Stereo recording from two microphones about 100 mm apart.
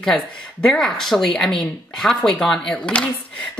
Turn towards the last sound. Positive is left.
turn(degrees=10)  # may be behind; listen again after turning